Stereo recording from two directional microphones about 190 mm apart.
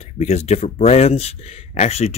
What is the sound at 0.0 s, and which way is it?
Speech, 35° left (ahead or behind).